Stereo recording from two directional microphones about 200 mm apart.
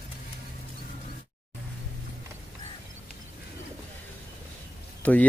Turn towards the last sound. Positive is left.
turn(degrees=5)  # may be behind; listen again after turning